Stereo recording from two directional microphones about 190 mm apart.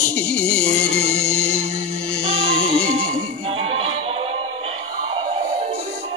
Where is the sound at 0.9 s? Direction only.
60° left (ahead or behind).